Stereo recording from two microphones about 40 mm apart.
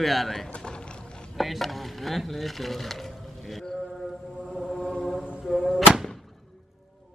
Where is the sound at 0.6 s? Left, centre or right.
Left.